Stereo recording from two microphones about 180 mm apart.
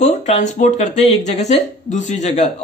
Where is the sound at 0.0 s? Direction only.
40° left (ahead or behind).